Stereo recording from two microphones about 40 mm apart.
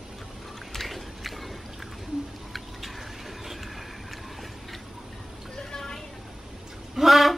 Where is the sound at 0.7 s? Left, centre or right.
Centre.